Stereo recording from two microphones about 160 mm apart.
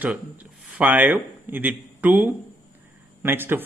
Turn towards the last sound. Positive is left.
turn(degrees=-15)  # may be behind; listen again after turning